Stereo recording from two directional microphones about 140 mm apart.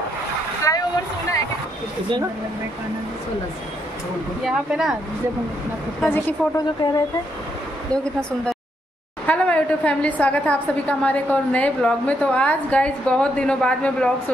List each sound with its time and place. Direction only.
0.7 s a sound: 20° left (ahead or behind)
4.5 s speech: 5° right (ahead or behind)
6.0 s a woman's voice: 15° left (ahead or behind)
7.9 s a woman's voice: 5° left (ahead or behind)